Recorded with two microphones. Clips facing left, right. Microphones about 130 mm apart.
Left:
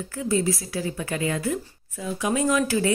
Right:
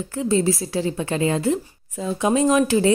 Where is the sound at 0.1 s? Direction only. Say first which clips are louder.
Right 4 dB; 30° right (ahead or behind).